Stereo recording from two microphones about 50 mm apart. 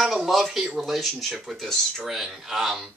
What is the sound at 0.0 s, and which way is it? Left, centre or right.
Speech, centre.